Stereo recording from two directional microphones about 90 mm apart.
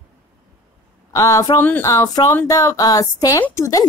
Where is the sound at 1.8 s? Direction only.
40° left (ahead or behind).